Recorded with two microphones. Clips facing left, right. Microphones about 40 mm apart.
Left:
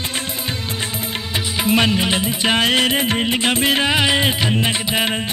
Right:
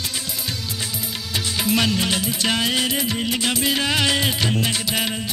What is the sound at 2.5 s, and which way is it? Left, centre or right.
Music, left.